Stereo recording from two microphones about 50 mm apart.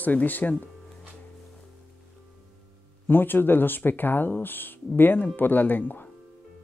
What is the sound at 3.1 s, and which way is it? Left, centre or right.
Speech, left.